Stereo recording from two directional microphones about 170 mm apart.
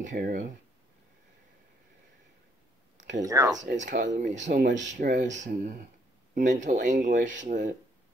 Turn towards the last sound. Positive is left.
turn(degrees=-50)  # may be behind; listen again after turning